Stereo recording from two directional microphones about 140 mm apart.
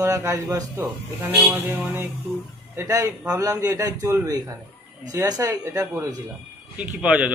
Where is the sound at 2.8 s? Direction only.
25° right (ahead or behind).